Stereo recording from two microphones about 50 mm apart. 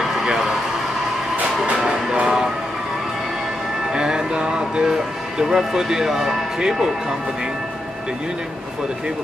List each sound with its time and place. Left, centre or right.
0.0 s a sound: centre
1.6 s music: centre
3.9 s music: centre
5.4 s speech: centre